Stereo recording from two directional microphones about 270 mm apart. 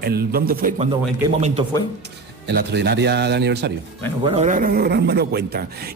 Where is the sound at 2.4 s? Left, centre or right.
Right.